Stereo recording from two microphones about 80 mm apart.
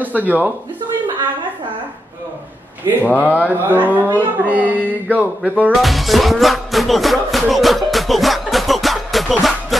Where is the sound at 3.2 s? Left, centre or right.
Centre.